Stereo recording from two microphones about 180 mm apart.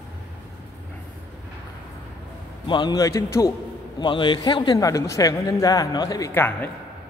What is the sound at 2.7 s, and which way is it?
Speech, 25° left (ahead or behind).